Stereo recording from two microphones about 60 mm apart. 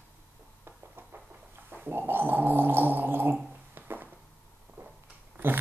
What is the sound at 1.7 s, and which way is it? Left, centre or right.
Gargling, right.